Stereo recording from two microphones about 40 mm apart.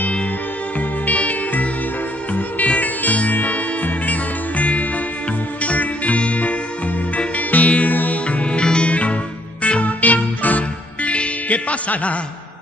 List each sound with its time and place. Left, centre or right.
0.7 s music: left
8.3 s music: left